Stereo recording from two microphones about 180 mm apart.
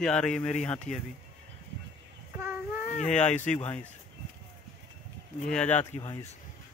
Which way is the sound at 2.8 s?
45° left (ahead or behind).